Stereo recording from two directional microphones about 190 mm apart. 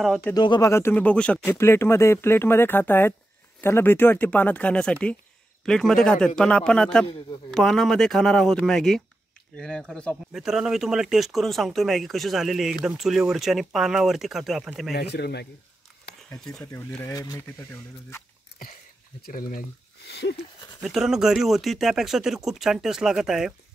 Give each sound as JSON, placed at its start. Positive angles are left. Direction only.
{"t": 0.0, "sound": "speech", "side_deg": 0}
{"t": 0.3, "sound": "speech", "side_deg": 20}
{"t": 15.0, "sound": "speech", "side_deg": 60}
{"t": 16.3, "sound": "speech", "side_deg": 5}
{"t": 16.6, "sound": "speech", "side_deg": 15}
{"t": 19.2, "sound": "speech", "side_deg": 50}
{"t": 20.1, "sound": "speech", "side_deg": 60}
{"t": 20.8, "sound": "speech", "side_deg": 0}